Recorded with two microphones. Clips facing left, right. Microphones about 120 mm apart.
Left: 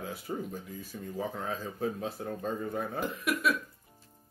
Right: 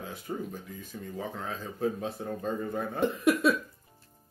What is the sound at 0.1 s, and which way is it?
Speech, 5° left (ahead or behind).